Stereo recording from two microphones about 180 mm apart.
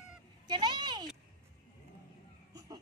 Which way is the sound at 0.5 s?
25° right (ahead or behind).